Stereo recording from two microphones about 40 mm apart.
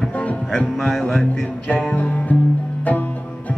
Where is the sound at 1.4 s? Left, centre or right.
Left.